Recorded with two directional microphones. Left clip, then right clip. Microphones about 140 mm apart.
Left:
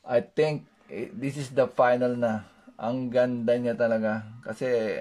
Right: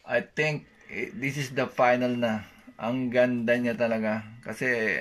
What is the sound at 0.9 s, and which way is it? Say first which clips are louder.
Speech: right 2 dB; 25° left (ahead or behind).